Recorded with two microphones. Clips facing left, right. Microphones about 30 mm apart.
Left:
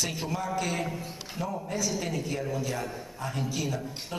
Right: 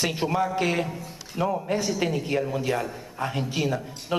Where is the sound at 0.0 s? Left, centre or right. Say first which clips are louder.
Right 7 dB; right.